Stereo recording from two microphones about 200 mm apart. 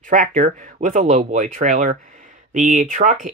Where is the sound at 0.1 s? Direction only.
40° right (ahead or behind).